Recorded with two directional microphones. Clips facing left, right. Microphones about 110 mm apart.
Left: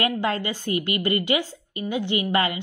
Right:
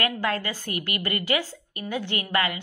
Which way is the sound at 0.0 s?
20° left (ahead or behind).